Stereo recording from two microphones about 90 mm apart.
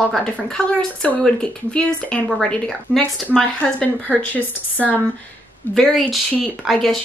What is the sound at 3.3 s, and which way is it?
Speech, 10° left (ahead or behind).